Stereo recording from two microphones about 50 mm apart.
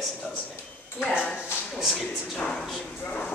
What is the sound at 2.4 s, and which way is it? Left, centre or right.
Speech, centre.